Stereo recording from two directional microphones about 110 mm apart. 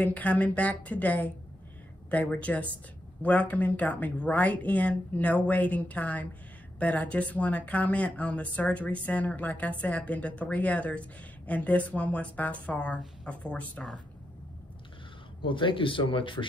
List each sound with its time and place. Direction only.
0.1 s speech: 15° left (ahead or behind)
15.4 s speech: 50° left (ahead or behind)